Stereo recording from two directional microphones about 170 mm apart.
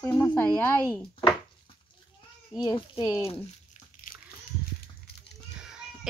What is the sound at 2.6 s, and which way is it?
Speech, 25° left (ahead or behind).